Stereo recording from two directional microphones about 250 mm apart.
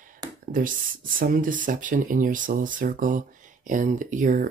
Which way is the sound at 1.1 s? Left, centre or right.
Right.